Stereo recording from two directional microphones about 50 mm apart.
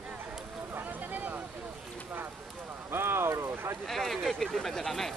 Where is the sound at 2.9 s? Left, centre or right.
Right.